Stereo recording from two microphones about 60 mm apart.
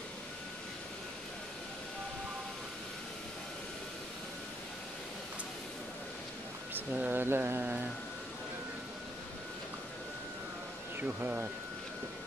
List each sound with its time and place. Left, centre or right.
6.7 s speech: right
11.0 s speech: right